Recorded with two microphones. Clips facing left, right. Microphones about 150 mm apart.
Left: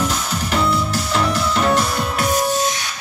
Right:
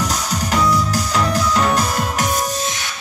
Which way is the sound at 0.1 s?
40° right (ahead or behind).